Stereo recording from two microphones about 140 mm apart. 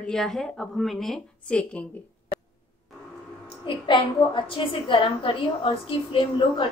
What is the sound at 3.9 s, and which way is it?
A woman's voice, 35° left (ahead or behind).